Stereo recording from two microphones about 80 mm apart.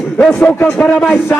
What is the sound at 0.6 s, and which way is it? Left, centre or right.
Speech, centre.